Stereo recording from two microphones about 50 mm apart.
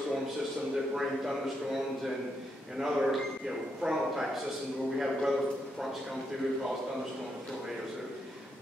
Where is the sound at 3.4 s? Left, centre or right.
Centre.